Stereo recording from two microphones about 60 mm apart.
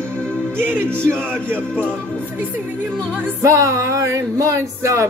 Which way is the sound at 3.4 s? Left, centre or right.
Right.